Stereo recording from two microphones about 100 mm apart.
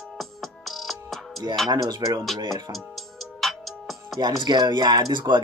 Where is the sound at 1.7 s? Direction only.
40° right (ahead or behind).